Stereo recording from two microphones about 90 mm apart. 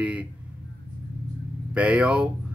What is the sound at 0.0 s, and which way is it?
Speech, 15° right (ahead or behind).